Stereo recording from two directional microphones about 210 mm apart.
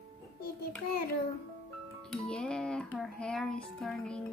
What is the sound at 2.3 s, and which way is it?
Speech, 5° left (ahead or behind).